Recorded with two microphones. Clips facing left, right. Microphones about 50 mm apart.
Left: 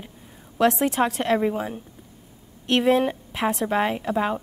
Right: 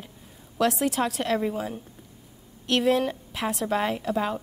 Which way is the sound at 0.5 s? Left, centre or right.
Left.